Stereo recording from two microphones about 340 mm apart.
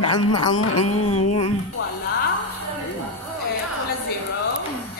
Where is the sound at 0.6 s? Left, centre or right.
Left.